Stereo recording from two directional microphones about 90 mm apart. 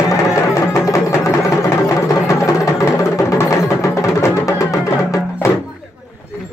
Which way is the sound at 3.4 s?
35° left (ahead or behind).